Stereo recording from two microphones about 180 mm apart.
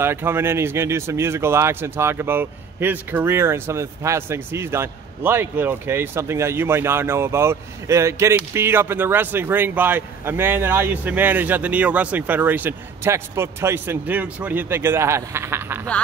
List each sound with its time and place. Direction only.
0.0 s speech: 10° right (ahead or behind)